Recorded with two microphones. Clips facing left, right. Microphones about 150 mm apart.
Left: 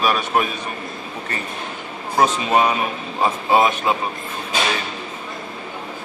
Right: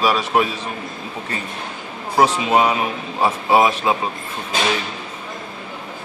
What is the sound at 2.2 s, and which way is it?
A man's voice, 15° right (ahead or behind).